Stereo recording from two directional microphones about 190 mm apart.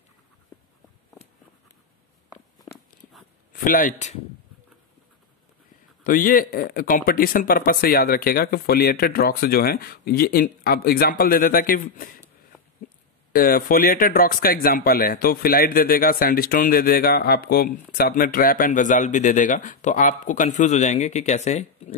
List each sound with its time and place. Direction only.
3.5 s speech: 45° left (ahead or behind)
6.0 s speech: 45° left (ahead or behind)
13.3 s speech: 50° left (ahead or behind)